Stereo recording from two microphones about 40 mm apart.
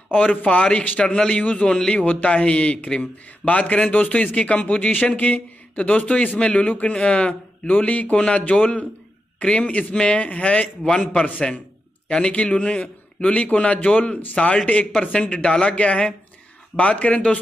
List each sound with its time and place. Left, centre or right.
0.1 s a man's voice: left
0.6 s a man's voice: left
2.0 s a man's voice: left
7.6 s a man's voice: left
9.7 s a man's voice: left
12.1 s a man's voice: left
15.7 s a man's voice: left